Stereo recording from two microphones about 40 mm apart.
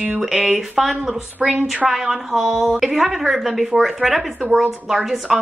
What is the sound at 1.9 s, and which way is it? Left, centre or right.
A woman's voice, centre.